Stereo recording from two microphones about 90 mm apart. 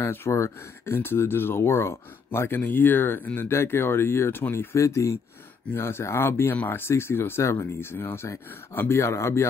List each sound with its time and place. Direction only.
0.0 s speech: 25° left (ahead or behind)